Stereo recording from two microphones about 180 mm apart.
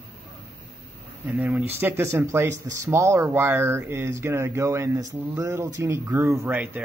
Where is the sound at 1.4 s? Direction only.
10° right (ahead or behind).